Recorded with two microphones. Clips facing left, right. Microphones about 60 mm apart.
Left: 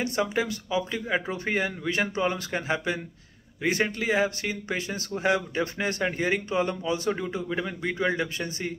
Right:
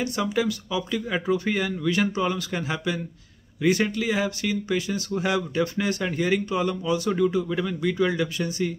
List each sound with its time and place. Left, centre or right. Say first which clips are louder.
0.0 s speech: right 2 dB; left